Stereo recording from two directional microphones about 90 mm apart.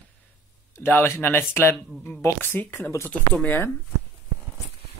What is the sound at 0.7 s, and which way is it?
Speech, 25° left (ahead or behind).